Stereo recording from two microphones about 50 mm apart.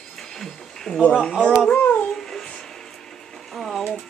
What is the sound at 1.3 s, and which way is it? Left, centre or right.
Speech, right.